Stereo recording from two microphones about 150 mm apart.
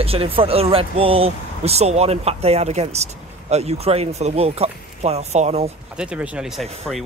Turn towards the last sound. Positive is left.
turn(degrees=0)  # may be behind; listen again after turning